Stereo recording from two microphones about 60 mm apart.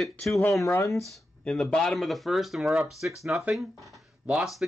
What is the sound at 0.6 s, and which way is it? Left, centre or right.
Speech, left.